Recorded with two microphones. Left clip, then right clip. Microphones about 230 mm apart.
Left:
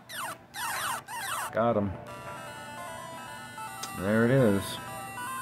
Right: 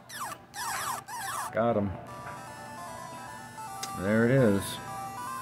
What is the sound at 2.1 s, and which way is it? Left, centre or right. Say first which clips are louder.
Music: left 1 dB; left.